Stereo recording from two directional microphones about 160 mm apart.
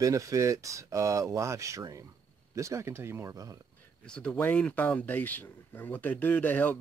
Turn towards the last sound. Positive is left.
turn(degrees=10)  # may be behind; listen again after turning